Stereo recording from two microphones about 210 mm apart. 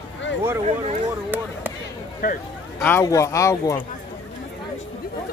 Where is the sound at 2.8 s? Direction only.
10° left (ahead or behind).